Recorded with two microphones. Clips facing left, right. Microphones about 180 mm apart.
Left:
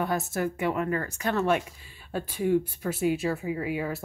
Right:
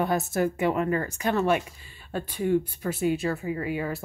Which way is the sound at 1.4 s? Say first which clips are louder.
Even; 5° right (ahead or behind).